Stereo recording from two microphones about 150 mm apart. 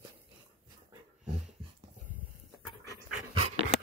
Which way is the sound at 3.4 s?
40° right (ahead or behind).